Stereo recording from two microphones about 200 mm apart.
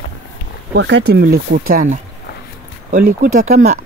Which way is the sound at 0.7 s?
60° right (ahead or behind).